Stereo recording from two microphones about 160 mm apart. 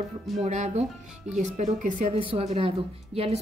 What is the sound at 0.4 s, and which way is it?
A woman's voice, 45° right (ahead or behind).